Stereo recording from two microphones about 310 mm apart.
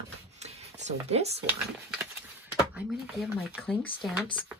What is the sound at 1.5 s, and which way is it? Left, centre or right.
Speech, centre.